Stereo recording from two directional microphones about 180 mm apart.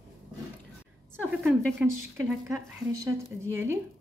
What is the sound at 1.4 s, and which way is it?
Speech, centre (ahead or behind).